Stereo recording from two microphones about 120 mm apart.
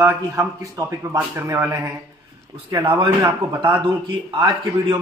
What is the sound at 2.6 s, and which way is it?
Speech, 35° right (ahead or behind).